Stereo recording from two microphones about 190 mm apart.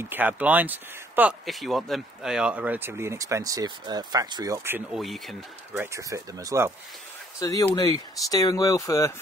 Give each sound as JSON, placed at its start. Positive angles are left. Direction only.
{"t": 0.1, "sound": "speech", "side_deg": -10}
{"t": 5.8, "sound": "speech", "side_deg": -15}
{"t": 7.3, "sound": "speech", "side_deg": 20}